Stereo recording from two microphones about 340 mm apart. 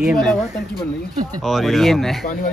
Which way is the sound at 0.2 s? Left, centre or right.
Centre.